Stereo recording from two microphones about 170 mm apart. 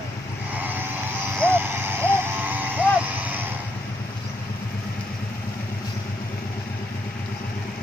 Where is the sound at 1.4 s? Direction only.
15° right (ahead or behind).